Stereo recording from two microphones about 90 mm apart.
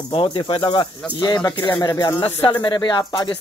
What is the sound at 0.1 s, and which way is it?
Speech, 75° left (ahead or behind).